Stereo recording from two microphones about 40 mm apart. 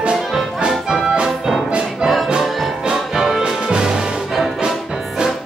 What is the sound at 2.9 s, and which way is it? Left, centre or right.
Music, centre.